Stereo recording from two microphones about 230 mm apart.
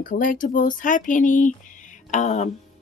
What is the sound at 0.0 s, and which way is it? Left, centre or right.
Speech, left.